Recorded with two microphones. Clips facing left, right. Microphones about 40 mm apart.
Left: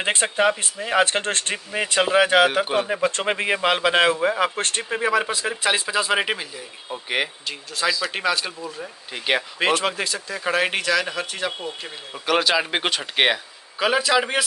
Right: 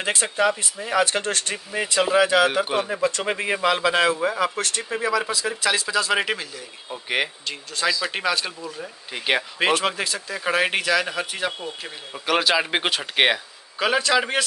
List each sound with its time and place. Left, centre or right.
0.0 s a man's voice: left
1.5 s a man's voice: left
2.6 s speech: centre
3.0 s speech: left
3.3 s a man's voice: left
7.1 s speech: centre